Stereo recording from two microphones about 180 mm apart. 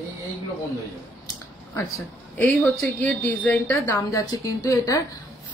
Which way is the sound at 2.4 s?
5° left (ahead or behind).